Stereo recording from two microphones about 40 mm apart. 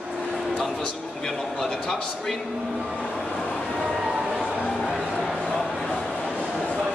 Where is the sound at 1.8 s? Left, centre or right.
Centre.